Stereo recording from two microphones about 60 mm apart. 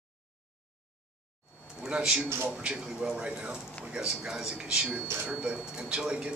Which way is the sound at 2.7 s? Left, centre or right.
Centre.